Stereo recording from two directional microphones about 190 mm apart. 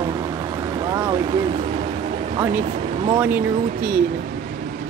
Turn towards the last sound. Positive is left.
turn(degrees=-45)  # may be behind; listen again after turning